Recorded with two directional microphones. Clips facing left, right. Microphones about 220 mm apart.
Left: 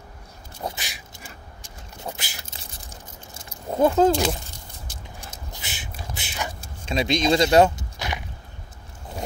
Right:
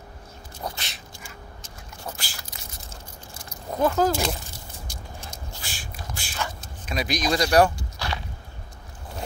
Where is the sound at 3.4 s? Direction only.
25° left (ahead or behind).